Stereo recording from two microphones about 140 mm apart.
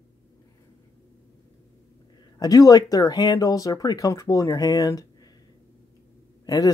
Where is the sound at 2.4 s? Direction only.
25° left (ahead or behind).